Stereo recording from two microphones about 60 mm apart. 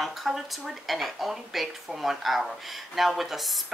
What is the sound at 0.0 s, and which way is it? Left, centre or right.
Speech, centre.